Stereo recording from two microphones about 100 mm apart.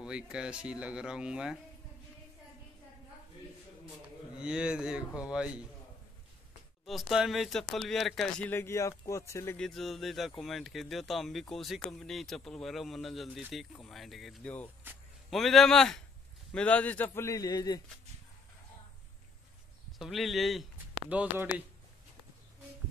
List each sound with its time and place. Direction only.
0.0 s speech: 10° right (ahead or behind)
4.4 s speech: 10° right (ahead or behind)
6.9 s speech: centre (ahead or behind)
8.4 s a man's voice: 20° left (ahead or behind)
9.6 s speech: 5° left (ahead or behind)
14.4 s speech: 15° left (ahead or behind)
15.2 s a man's voice: centre (ahead or behind); by 17.8 s 40° left (ahead or behind)
20.0 s speech: centre (ahead or behind)
21.1 s speech: 15° right (ahead or behind)